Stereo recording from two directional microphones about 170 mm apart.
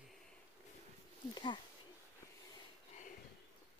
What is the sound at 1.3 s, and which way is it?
Speech, 25° left (ahead or behind).